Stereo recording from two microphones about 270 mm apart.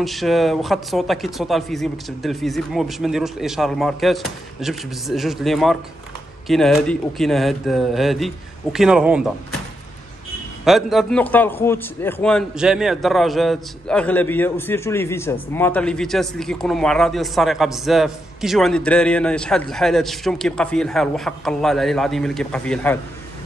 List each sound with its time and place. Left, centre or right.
0.0 s a man's voice: centre
10.6 s a man's voice: centre